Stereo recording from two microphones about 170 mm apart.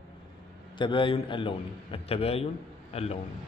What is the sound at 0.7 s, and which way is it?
A man's voice, 30° left (ahead or behind).